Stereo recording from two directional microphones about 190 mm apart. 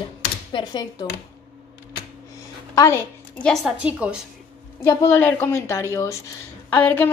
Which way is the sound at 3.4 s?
Centre (ahead or behind).